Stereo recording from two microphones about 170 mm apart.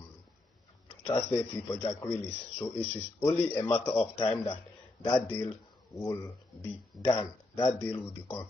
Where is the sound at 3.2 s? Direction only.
20° left (ahead or behind).